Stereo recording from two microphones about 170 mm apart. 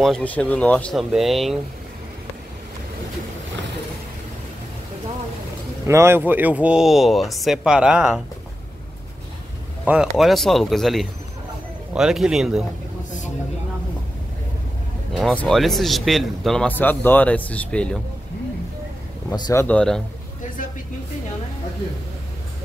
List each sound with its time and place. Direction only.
0.0 s speech: 5° left (ahead or behind)
5.9 s speech: 15° right (ahead or behind)
9.8 s speech: 5° right (ahead or behind)
15.1 s speech: 5° left (ahead or behind)
19.2 s speech: 20° left (ahead or behind)
19.6 s speech: 5° left (ahead or behind)